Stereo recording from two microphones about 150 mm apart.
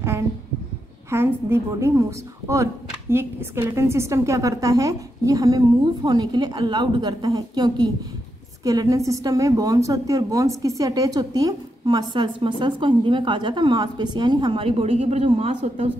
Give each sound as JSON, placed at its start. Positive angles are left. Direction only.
{"t": 1.1, "sound": "a woman's voice", "side_deg": -15}